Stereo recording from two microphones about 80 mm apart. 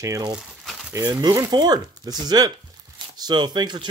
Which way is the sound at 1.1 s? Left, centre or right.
Right.